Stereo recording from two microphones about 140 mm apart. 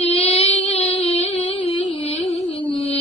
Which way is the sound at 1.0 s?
50° left (ahead or behind).